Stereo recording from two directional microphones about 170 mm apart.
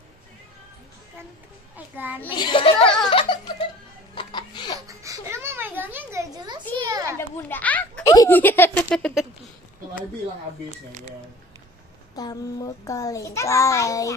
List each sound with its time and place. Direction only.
2.0 s a child's voice: 10° right (ahead or behind)
2.3 s a child's voice: 30° left (ahead or behind)
3.1 s music: 30° left (ahead or behind)
4.1 s laughter: 25° left (ahead or behind)
4.7 s a sound: 20° right (ahead or behind)
6.8 s children playing: 20° right (ahead or behind)
7.2 s a sound: 10° left (ahead or behind)
8.3 s speech: 10° left (ahead or behind)
10.9 s speech: 45° right (ahead or behind)
12.2 s a child's voice: 20° left (ahead or behind)